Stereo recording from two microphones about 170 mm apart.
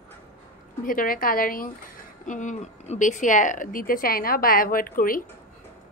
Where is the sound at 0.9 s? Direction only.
55° left (ahead or behind).